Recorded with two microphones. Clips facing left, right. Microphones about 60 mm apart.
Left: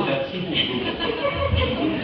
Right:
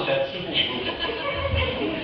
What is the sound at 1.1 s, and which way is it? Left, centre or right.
Speech, left.